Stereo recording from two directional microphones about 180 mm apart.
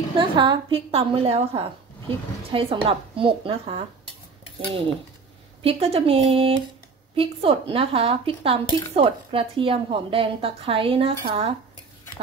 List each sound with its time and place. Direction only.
0.2 s a woman's voice: 30° right (ahead or behind)
5.6 s a woman's voice: 35° right (ahead or behind)
8.6 s speech: 20° left (ahead or behind)
8.9 s a woman's voice: 30° right (ahead or behind)